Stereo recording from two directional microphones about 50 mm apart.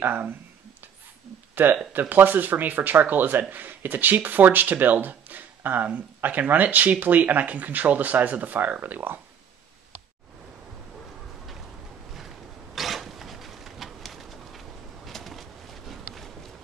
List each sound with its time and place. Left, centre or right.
0.0 s speech: right
1.5 s speech: right
12.7 s a sound: centre